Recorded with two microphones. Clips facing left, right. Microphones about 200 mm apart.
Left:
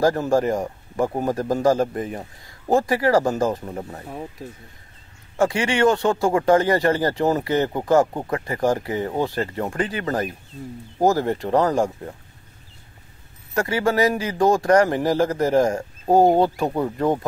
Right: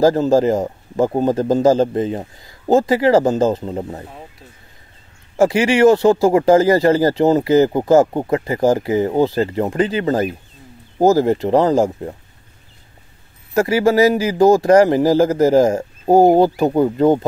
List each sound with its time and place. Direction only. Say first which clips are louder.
0.0 s speech: right 6 dB; 25° right (ahead or behind)
5.4 s speech: right 6 dB; 25° right (ahead or behind)
13.6 s speech: right 7 dB; 25° right (ahead or behind)